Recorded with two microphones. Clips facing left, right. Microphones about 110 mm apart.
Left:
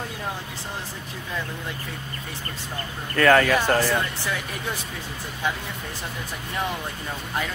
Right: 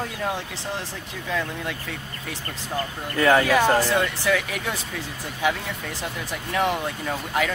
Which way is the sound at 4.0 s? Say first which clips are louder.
Right 5 dB; 90° right.